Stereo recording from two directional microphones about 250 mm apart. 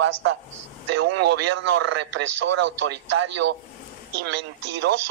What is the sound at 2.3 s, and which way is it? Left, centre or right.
Speech, right.